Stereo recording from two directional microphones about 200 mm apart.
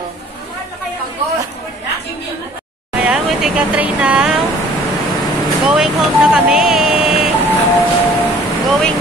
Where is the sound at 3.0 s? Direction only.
5° right (ahead or behind).